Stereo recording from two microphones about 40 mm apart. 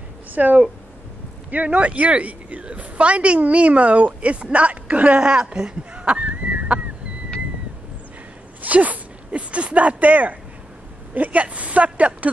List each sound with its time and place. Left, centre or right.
0.3 s a woman's voice: right
5.2 s a sound: right
8.6 s a woman's voice: right